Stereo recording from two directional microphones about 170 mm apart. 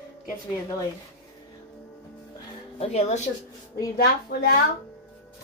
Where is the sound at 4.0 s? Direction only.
70° left (ahead or behind).